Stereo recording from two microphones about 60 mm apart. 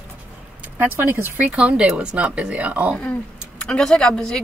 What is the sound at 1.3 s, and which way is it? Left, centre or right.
Speech, right.